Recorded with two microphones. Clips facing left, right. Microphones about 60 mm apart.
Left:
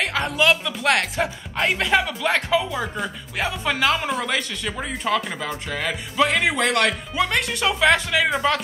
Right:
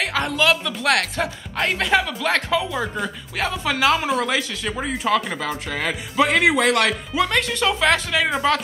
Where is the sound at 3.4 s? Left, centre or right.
Centre.